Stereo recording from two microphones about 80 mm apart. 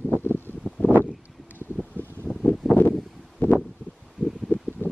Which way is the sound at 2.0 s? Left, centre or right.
Right.